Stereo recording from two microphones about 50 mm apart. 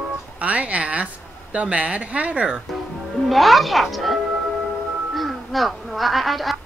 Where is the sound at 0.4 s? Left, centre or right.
Right.